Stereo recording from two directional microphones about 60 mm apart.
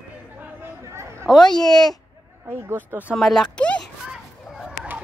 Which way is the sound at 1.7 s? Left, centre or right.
Left.